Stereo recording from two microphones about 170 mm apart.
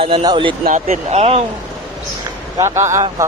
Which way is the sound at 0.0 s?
30° right (ahead or behind).